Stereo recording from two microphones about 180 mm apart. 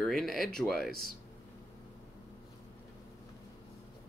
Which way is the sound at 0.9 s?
55° right (ahead or behind).